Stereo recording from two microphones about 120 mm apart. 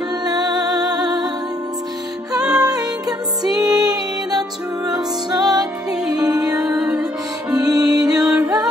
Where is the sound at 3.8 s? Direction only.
35° right (ahead or behind).